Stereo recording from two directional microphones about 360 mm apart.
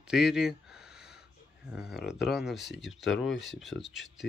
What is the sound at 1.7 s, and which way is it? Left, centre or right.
Speech, centre.